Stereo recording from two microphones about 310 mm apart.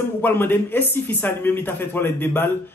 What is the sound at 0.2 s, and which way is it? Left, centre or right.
Speech, centre.